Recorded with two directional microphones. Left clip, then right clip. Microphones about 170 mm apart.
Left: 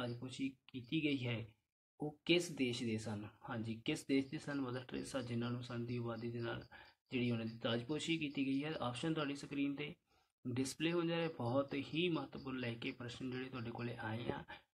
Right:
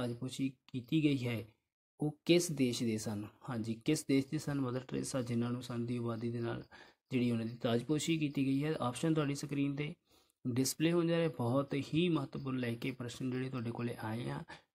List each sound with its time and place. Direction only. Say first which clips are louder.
0.0 s speech: right 5 dB; 40° right (ahead or behind)